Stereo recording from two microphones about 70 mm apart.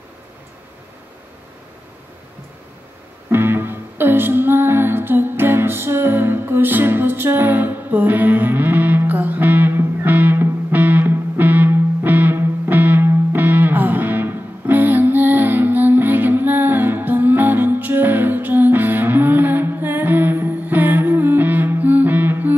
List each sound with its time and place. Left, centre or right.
3.3 s music: right